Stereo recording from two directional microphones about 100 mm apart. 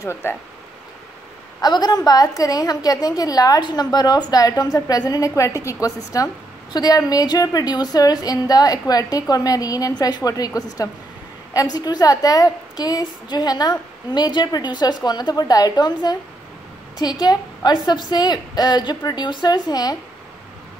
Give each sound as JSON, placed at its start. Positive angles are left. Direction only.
{"t": 0.0, "sound": "speech", "side_deg": 25}
{"t": 1.6, "sound": "a woman's voice", "side_deg": 40}